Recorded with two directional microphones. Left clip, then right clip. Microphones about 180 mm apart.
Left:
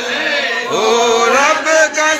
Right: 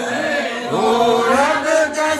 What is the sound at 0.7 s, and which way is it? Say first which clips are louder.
Chant: left 2 dB; 5° left (ahead or behind).